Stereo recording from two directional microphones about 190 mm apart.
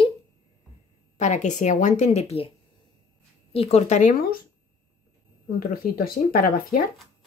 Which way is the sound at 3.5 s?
30° left (ahead or behind).